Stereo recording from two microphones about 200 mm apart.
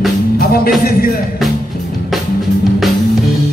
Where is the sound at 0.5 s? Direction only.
50° left (ahead or behind).